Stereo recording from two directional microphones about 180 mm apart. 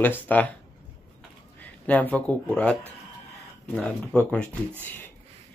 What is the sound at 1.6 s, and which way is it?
Speech, 10° left (ahead or behind).